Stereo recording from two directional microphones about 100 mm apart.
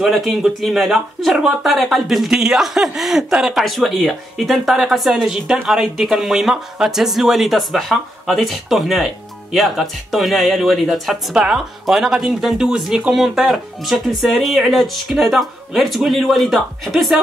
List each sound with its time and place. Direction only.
0.0 s speech: centre (ahead or behind)